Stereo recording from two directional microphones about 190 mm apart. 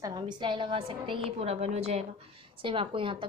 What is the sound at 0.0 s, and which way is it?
A woman's voice, 25° right (ahead or behind).